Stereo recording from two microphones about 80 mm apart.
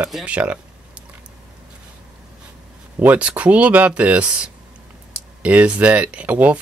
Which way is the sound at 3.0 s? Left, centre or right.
Centre.